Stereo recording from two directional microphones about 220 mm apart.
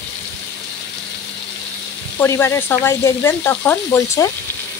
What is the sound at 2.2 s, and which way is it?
Sizzle, 10° left (ahead or behind).